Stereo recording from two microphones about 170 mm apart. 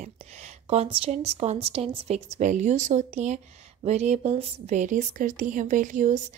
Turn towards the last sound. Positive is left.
turn(degrees=-50)  # may be behind; listen again after turning